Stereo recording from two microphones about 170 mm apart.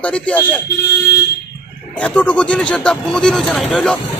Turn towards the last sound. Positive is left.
turn(degrees=5)  # may be behind; listen again after turning